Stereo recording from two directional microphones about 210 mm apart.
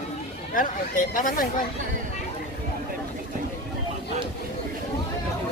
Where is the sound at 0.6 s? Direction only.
40° left (ahead or behind).